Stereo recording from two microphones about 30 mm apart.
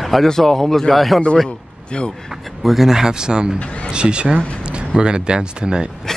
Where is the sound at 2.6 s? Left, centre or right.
Centre.